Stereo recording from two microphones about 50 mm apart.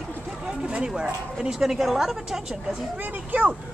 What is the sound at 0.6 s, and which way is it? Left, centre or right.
A woman's voice, centre.